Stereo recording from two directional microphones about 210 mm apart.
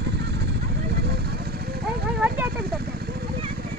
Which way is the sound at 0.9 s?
50° right (ahead or behind).